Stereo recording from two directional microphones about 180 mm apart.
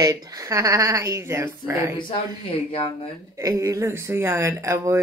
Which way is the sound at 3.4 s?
15° right (ahead or behind).